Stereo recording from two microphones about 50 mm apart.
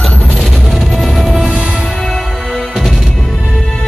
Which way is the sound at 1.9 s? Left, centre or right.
Centre.